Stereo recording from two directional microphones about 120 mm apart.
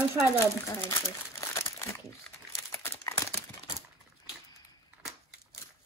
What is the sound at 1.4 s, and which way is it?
Crumpling, 20° left (ahead or behind).